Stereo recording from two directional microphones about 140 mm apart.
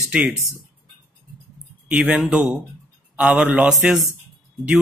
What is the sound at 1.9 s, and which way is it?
Speech, 10° right (ahead or behind).